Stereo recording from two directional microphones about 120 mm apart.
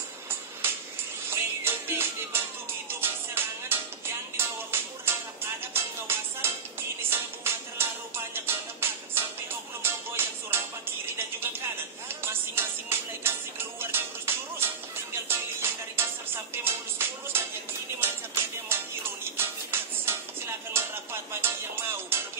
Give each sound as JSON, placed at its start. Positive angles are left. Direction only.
{"t": 1.3, "sound": "music", "side_deg": -20}